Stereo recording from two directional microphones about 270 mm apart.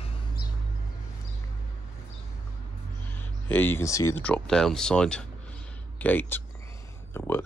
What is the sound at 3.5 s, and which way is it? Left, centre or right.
Speech, centre.